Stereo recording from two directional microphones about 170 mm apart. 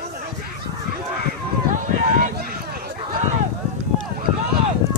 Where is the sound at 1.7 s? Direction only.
50° right (ahead or behind).